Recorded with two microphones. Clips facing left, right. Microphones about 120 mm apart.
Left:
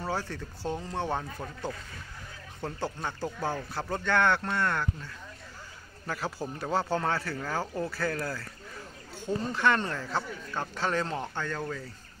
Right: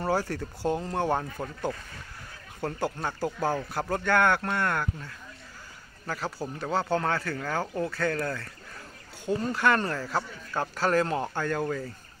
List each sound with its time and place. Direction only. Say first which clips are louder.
0.0 s speech: right 6 dB; 10° right (ahead or behind)
2.8 s speech: right 3 dB; 15° right (ahead or behind)
6.0 s a man's voice: right 1 dB; 5° left (ahead or behind); by 11.8 s 15° right (ahead or behind)